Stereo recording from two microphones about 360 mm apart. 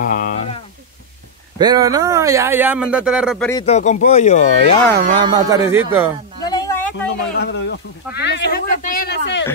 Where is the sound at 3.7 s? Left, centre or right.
Centre.